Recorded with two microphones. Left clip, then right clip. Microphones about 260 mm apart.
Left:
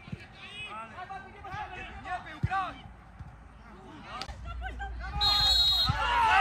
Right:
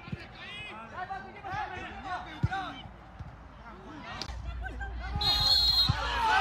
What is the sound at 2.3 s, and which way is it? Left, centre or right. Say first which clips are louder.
Basketball bounce: left 3 dB; left.